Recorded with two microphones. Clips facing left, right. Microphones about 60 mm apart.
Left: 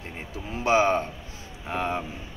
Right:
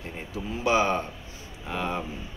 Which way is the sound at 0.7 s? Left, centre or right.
Left.